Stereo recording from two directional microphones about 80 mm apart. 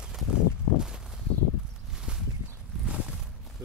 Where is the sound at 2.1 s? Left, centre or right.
Centre.